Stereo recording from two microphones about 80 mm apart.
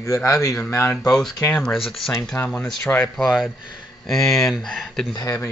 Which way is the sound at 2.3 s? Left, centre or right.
Left.